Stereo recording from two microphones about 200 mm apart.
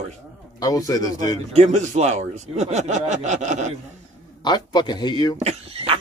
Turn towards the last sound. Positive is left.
turn(degrees=-30)  # may be behind; listen again after turning